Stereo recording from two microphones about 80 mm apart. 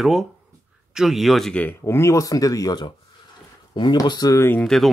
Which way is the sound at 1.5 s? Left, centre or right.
Centre.